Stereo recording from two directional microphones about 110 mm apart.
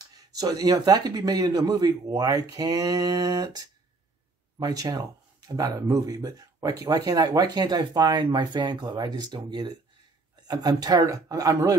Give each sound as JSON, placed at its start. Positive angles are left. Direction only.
{"t": 0.1, "sound": "speech", "side_deg": -35}